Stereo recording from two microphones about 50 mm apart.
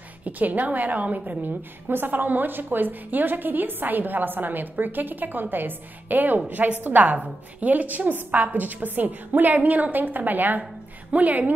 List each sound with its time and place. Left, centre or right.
0.2 s a woman's voice: right